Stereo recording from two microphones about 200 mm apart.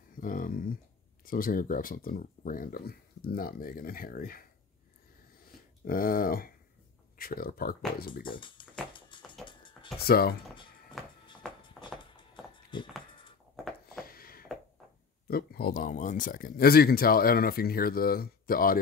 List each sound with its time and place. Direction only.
0.2 s speech: 45° left (ahead or behind)
5.9 s speech: 45° left (ahead or behind)
8.4 s speech: 25° left (ahead or behind)
8.9 s music: 25° left (ahead or behind)
9.5 s a sound: 25° left (ahead or behind)
10.0 s speech: 50° left (ahead or behind)
11.8 s a sound: 5° left (ahead or behind)
12.7 s speech: 25° left (ahead or behind)
13.9 s a sound: 45° left (ahead or behind)
15.2 s speech: 50° left (ahead or behind)